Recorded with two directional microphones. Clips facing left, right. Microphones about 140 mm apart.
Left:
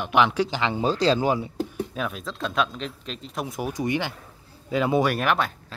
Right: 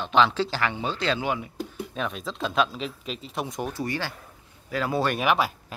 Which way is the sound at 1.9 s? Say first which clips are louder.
Even; centre (ahead or behind).